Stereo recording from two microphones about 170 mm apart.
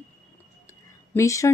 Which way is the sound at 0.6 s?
15° left (ahead or behind).